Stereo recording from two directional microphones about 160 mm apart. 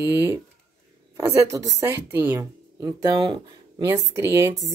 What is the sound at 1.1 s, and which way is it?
Speech, 20° right (ahead or behind).